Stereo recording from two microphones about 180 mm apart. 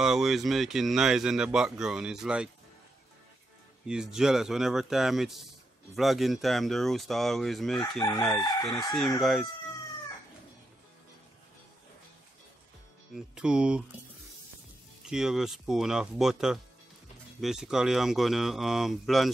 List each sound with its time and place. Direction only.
0.0 s speech: 5° right (ahead or behind)
3.8 s speech: 5° right (ahead or behind)
8.0 s crowing: 15° left (ahead or behind)
8.4 s chicken: 25° left (ahead or behind)
8.7 s speech: centre (ahead or behind)
13.1 s speech: 5° right (ahead or behind)
15.0 s speech: 5° right (ahead or behind)